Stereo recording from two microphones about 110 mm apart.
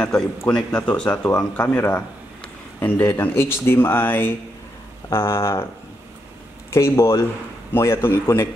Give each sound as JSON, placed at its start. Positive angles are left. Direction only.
{"t": 0.5, "sound": "a man's voice", "side_deg": 10}
{"t": 6.7, "sound": "a man's voice", "side_deg": 25}